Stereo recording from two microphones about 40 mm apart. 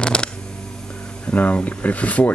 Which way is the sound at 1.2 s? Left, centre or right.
Left.